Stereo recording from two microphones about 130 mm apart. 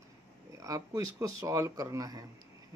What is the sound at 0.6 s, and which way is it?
Speech, 25° right (ahead or behind).